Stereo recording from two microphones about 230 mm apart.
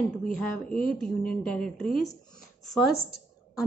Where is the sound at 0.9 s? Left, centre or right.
Centre.